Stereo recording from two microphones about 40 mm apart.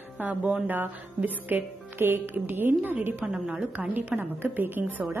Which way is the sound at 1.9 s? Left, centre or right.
Right.